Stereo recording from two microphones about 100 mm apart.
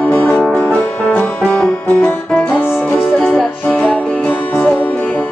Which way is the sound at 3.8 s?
15° left (ahead or behind).